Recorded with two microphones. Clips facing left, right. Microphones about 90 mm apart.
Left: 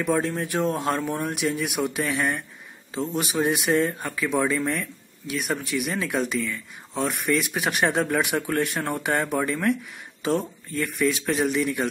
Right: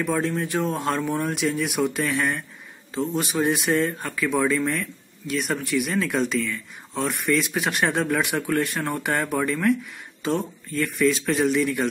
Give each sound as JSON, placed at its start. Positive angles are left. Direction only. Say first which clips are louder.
{"t": 0.1, "sound": "speech", "louder": "left 2 dB", "side_deg": 20}
{"t": 0.6, "sound": "speech", "louder": "left 2 dB", "side_deg": 5}
{"t": 3.4, "sound": "speech", "louder": "left 1 dB", "side_deg": 15}